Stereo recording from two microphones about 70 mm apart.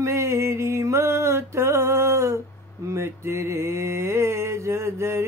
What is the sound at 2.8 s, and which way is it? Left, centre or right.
Mantra, right.